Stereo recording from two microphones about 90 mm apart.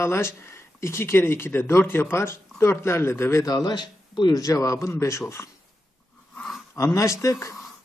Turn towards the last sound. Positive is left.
turn(degrees=35)  # may be behind; listen again after turning